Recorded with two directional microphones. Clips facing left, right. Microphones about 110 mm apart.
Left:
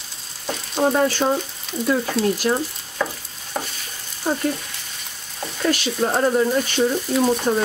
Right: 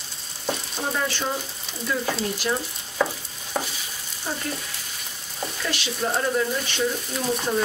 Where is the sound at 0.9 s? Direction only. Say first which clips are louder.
Left 8 dB; 45° left (ahead or behind).